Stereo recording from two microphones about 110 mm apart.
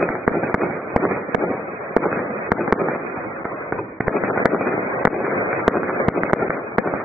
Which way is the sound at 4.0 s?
Centre (ahead or behind).